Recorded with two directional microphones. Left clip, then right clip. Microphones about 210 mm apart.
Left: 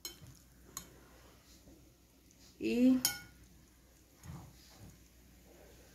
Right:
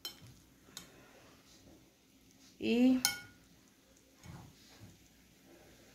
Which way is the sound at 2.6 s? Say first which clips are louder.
Right 1 dB; 30° right (ahead or behind).